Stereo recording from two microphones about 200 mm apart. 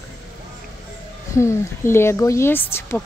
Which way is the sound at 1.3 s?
15° left (ahead or behind).